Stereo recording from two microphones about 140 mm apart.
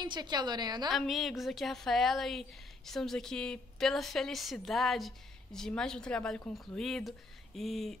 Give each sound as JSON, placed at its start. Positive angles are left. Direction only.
{"t": 0.0, "sound": "a woman's voice", "side_deg": -30}
{"t": 0.9, "sound": "a woman's voice", "side_deg": 0}